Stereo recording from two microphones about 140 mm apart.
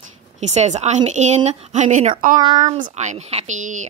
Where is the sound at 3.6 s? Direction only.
65° right (ahead or behind).